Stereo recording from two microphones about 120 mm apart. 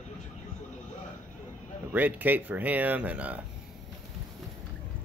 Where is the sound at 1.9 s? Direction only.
15° right (ahead or behind).